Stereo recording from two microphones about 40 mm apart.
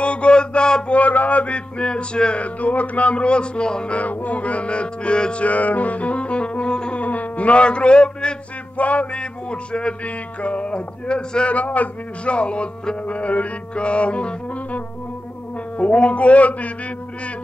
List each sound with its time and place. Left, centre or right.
0.0 s mantra: left
0.9 s a sound: left
2.4 s speech: left
3.9 s speech: left
7.0 s a sound: left
8.7 s music: left
10.0 s a sound: left
11.5 s speech: left
15.8 s speech: left